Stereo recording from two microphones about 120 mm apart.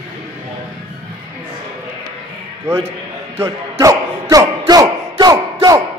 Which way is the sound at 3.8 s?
30° right (ahead or behind).